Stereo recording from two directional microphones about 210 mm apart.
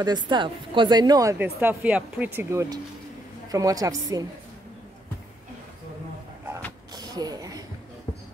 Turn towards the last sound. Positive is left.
turn(degrees=-20)  # may be behind; listen again after turning